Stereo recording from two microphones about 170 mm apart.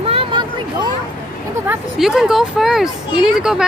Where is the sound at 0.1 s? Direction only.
30° right (ahead or behind).